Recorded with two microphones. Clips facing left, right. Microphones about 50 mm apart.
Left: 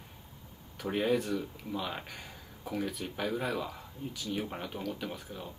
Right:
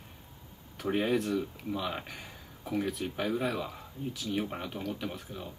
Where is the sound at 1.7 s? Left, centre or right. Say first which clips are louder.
Even; centre.